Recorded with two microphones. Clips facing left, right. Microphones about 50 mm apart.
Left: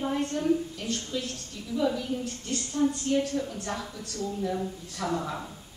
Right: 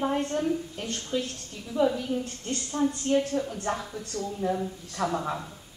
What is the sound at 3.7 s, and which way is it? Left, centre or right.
Speech, right.